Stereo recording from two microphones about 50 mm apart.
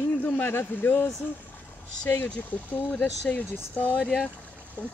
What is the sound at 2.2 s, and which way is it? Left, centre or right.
Speech, left.